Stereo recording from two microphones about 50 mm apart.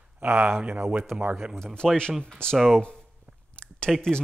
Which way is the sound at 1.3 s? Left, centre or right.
Centre.